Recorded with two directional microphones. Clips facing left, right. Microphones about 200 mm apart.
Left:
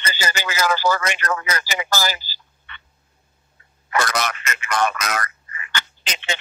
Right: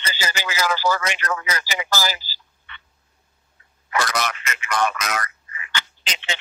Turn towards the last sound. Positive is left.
turn(degrees=45)  # may be behind; listen again after turning